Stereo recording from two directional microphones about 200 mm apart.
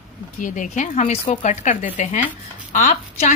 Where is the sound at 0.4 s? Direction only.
40° left (ahead or behind).